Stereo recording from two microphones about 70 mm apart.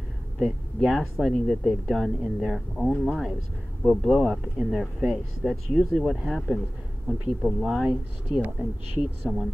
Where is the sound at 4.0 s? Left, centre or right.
Centre.